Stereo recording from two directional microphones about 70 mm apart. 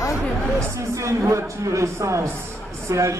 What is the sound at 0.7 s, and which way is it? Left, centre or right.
Speech, right.